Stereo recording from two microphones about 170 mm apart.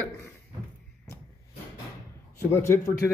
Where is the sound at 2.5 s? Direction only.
15° left (ahead or behind).